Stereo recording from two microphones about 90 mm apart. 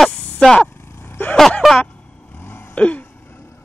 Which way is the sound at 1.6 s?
Centre (ahead or behind).